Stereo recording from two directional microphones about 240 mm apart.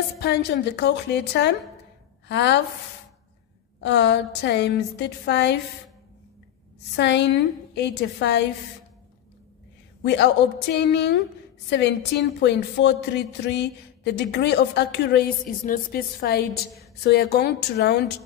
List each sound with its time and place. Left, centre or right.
0.2 s a woman's voice: left
3.8 s a woman's voice: left
7.0 s a woman's voice: left
10.0 s a woman's voice: left